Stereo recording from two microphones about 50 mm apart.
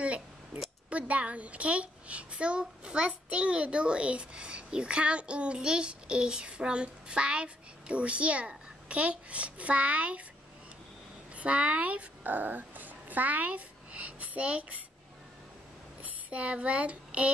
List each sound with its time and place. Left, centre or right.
0.8 s a child's voice: right
11.3 s a woman's voice: right
16.0 s speech: right